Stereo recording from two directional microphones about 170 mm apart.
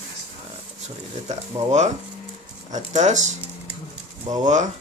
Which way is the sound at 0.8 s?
45° right (ahead or behind).